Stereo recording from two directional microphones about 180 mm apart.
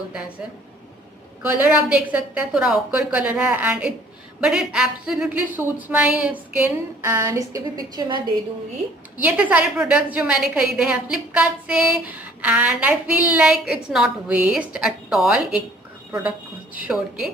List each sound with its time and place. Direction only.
1.4 s a woman's voice: 10° right (ahead or behind)
9.2 s a woman's voice: 10° right (ahead or behind)